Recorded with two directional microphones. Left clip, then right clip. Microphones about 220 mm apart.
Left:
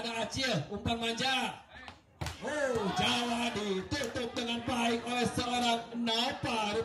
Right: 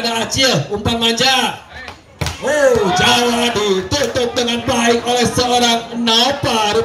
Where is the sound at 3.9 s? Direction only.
25° right (ahead or behind).